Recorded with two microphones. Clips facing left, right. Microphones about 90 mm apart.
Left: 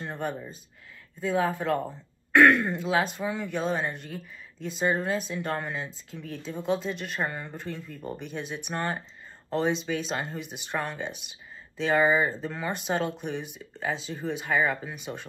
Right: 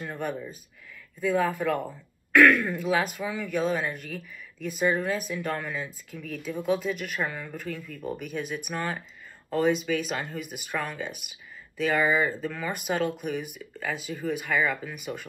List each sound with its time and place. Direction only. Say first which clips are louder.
0.0 s speech: even; 25° left (ahead or behind)